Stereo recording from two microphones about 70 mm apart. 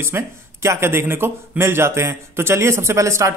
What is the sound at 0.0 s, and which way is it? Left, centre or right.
Speech, right.